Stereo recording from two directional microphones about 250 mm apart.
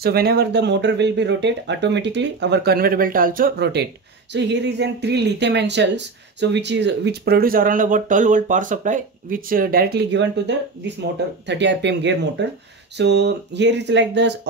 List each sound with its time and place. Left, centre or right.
0.0 s speech: right